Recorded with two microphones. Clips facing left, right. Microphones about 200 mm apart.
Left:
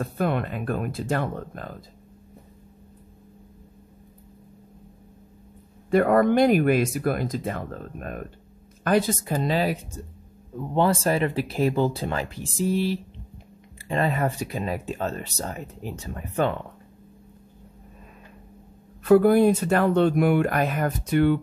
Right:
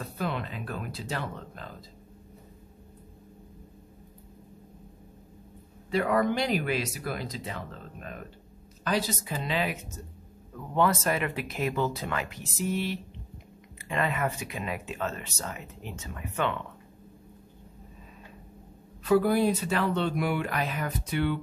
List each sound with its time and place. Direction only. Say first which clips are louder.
0.0 s speech: left 7 dB; 55° left (ahead or behind)
5.9 s speech: left 7 dB; 50° left (ahead or behind); by 16.5 s 35° left (ahead or behind)
19.0 s speech: left 7 dB; 55° left (ahead or behind)